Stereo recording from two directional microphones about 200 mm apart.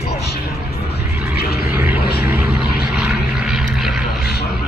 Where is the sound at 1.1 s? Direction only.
10° right (ahead or behind).